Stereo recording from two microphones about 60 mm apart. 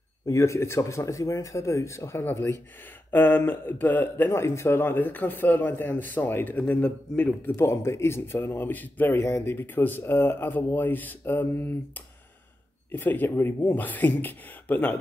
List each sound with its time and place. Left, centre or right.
0.3 s speech: left
3.1 s a man's voice: left
4.4 s a man's voice: left
7.4 s a man's voice: left
12.9 s a man's voice: left